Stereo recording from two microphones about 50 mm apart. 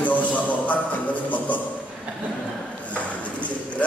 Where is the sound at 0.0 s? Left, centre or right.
Left.